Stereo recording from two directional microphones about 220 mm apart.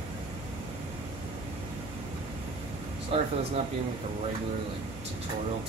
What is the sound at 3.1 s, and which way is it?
Speech, 25° right (ahead or behind).